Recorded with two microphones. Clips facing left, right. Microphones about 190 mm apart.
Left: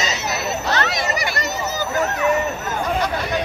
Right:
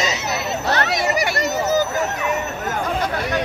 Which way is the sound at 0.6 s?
60° right (ahead or behind).